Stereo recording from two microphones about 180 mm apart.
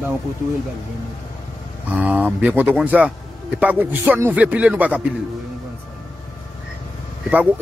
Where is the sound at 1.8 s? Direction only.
10° right (ahead or behind).